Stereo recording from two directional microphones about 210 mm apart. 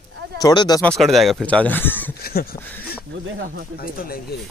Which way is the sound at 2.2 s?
45° left (ahead or behind).